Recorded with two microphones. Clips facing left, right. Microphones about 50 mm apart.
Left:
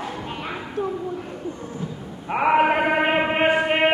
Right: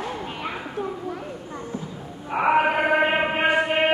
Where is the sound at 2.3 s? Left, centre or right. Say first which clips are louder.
Left 1 dB; left.